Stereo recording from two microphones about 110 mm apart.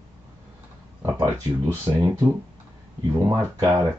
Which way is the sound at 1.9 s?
35° right (ahead or behind).